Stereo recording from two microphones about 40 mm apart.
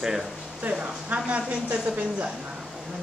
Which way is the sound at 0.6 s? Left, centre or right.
Right.